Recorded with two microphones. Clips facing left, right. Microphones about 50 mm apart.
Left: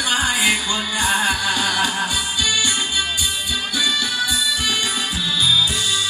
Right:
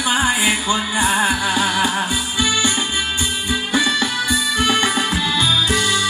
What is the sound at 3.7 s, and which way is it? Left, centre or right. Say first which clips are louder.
Music: right 4 dB; right.